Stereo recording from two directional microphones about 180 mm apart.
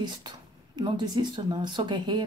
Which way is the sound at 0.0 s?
25° right (ahead or behind).